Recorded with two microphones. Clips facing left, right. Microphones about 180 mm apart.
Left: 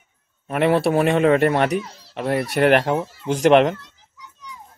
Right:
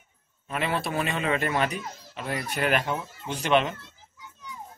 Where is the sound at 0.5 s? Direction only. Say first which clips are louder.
Left 11 dB; 60° left (ahead or behind); by 3.7 s 80° left.